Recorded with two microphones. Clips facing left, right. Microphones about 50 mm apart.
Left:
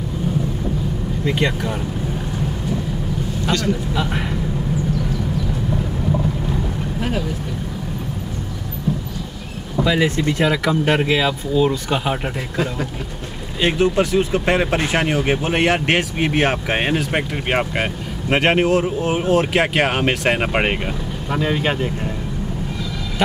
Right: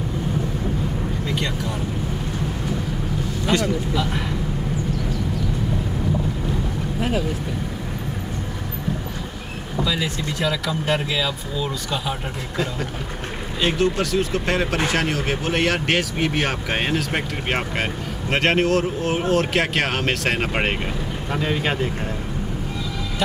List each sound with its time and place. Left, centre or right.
1.2 s speech: left
3.6 s speech: left
7.0 s speech: centre
9.8 s speech: left
13.6 s speech: left; by 21.9 s centre